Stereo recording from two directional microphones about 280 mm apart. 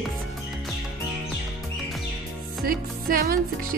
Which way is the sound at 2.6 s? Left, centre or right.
Right.